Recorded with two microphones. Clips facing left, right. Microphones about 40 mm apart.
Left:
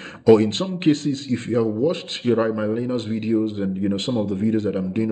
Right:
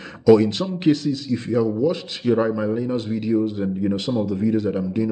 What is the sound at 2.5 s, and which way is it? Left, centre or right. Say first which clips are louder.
Speech: even; left.